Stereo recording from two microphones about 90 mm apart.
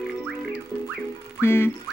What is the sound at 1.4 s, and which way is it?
Music, 25° left (ahead or behind).